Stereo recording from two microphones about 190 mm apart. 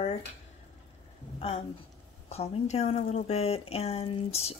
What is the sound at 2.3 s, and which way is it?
Speech, 35° left (ahead or behind).